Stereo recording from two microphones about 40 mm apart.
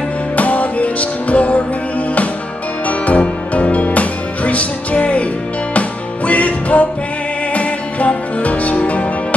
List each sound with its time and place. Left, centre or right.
0.4 s music: left
2.9 s music: left